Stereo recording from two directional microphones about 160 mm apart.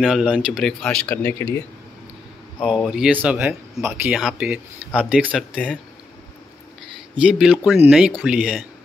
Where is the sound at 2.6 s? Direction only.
Centre (ahead or behind).